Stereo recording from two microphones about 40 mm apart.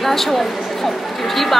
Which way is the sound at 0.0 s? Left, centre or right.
Centre.